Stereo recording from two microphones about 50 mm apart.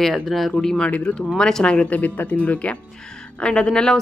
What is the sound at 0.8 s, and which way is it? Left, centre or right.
A woman's voice, left.